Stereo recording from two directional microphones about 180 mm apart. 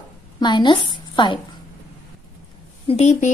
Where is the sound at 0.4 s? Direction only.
25° left (ahead or behind).